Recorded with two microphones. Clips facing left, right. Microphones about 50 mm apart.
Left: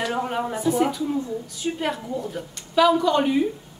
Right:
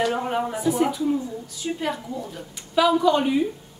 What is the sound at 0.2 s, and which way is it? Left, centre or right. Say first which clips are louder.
Speech: even; centre.